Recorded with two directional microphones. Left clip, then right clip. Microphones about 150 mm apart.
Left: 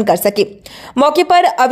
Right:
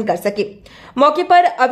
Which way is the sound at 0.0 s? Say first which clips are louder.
Left 5 dB; 35° left (ahead or behind).